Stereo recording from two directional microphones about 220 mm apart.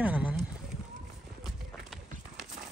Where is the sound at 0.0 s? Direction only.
5° right (ahead or behind).